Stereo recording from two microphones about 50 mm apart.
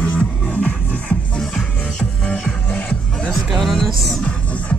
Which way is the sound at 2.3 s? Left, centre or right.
Left.